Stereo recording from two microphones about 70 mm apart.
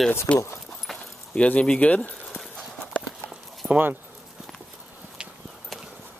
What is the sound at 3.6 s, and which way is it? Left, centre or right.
Speech, centre.